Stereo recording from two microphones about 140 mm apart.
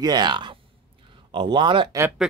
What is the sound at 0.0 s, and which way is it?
Speech, 30° right (ahead or behind).